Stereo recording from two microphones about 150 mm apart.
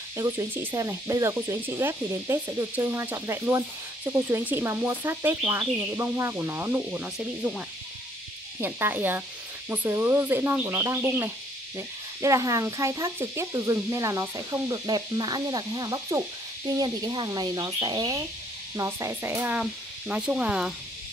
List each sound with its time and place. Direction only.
0.2 s speech: 15° right (ahead or behind)
8.5 s speech: 15° right (ahead or behind)